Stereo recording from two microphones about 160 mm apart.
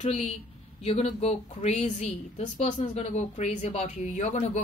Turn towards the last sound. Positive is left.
turn(degrees=45)  # may be behind; listen again after turning